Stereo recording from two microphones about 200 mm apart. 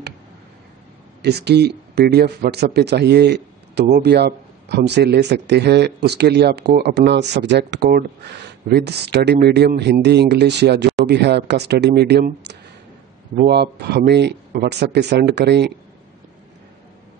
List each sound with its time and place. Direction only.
1.2 s a man's voice: 55° right (ahead or behind)